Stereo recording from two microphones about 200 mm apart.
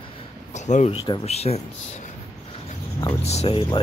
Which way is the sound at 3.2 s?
30° left (ahead or behind).